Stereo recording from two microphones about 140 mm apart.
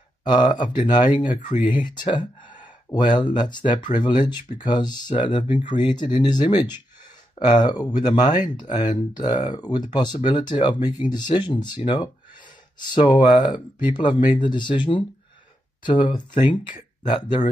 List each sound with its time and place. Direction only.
0.2 s speech: 30° left (ahead or behind)